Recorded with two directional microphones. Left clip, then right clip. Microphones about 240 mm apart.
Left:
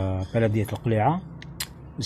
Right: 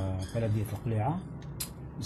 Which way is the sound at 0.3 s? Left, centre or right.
Centre.